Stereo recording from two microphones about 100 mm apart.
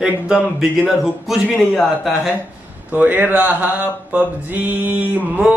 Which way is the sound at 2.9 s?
15° right (ahead or behind).